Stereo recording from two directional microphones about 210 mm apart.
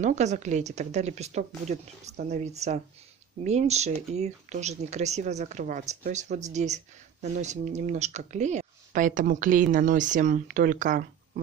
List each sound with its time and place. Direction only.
0.0 s speech: 35° right (ahead or behind)